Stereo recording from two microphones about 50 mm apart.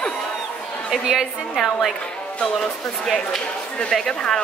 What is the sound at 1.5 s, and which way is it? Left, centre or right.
Speech, centre.